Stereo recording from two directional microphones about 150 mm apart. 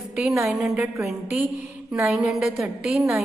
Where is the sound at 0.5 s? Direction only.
Centre (ahead or behind).